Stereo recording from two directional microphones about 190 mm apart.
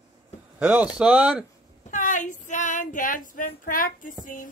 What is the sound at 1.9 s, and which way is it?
Female singing, 45° left (ahead or behind).